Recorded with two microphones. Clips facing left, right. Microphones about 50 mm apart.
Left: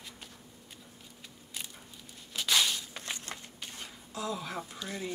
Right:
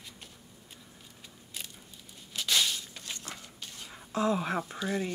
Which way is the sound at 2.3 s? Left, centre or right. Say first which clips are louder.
Left 1 dB; centre.